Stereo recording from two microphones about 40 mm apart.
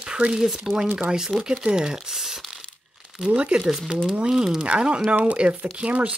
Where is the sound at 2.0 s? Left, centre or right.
Centre.